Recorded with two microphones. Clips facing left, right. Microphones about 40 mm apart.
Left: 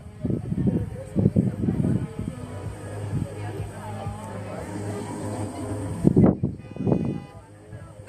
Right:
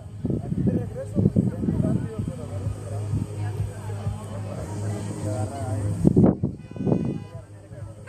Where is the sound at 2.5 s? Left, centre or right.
Left.